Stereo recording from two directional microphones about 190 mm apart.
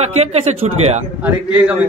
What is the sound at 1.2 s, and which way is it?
Speech, 10° right (ahead or behind).